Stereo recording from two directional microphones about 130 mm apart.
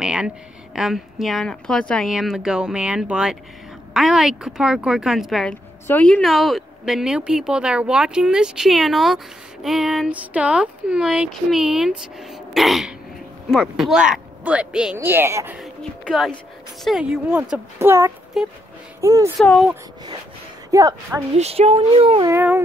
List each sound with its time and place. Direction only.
0.0 s a sound: 5° right (ahead or behind)
0.7 s speech: centre (ahead or behind)
15.0 s speech: 20° right (ahead or behind)
15.5 s speech: centre (ahead or behind)
17.7 s a woman's voice: 20° right (ahead or behind)
18.4 s speech: 5° right (ahead or behind)
18.9 s a woman's voice: 25° right (ahead or behind)
20.7 s a woman's voice: 25° right (ahead or behind)
21.4 s speech: 50° right (ahead or behind)